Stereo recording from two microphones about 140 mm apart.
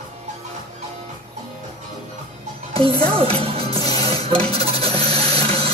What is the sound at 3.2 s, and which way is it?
Speech, 45° right (ahead or behind).